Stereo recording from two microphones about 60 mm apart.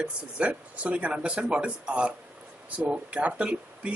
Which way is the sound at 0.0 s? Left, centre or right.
Right.